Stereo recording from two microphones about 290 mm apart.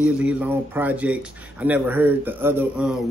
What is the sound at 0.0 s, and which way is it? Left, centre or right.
A man's voice, centre.